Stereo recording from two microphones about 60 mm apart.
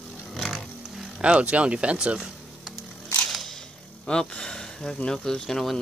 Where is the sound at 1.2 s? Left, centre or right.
Centre.